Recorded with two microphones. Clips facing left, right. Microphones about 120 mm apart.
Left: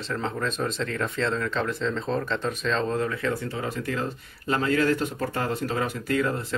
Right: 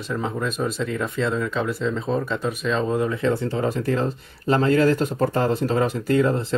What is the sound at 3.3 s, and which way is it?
Speech, 35° right (ahead or behind).